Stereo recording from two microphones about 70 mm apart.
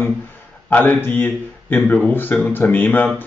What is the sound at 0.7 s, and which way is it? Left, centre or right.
Speech, left.